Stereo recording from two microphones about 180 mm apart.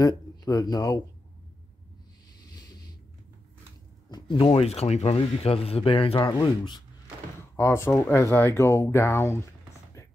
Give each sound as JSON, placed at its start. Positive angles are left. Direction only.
{"t": 0.0, "sound": "speech", "side_deg": 20}
{"t": 4.1, "sound": "speech", "side_deg": 30}
{"t": 10.0, "sound": "chopping", "side_deg": 15}